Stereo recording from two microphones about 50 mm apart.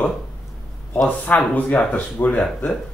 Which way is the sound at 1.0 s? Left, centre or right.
Left.